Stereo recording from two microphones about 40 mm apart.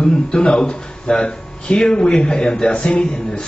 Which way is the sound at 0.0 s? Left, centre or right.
Left.